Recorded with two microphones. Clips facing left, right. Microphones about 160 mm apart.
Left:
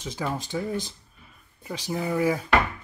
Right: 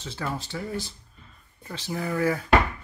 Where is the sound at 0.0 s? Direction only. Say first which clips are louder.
Left 2 dB; 15° left (ahead or behind).